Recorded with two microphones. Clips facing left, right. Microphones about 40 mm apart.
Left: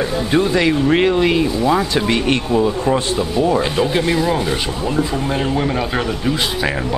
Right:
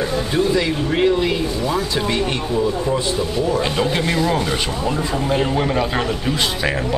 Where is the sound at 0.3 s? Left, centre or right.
Left.